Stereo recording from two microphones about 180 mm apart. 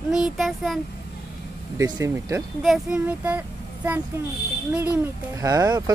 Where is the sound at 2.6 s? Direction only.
5° right (ahead or behind).